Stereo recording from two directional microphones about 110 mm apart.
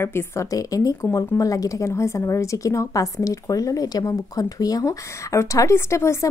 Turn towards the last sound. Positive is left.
turn(degrees=25)  # may be behind; listen again after turning